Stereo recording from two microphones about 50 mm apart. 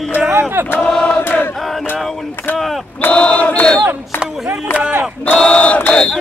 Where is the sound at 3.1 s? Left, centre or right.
Left.